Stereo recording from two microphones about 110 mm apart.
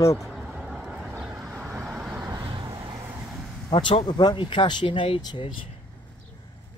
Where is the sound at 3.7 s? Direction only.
40° left (ahead or behind).